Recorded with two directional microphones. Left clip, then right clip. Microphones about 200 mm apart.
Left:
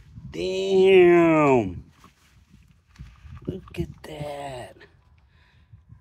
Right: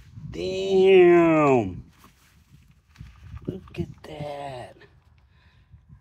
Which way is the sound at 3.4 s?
45° left (ahead or behind).